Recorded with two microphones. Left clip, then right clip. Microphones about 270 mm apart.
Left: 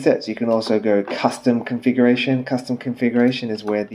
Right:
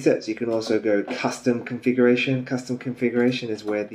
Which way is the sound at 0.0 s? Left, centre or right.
Left.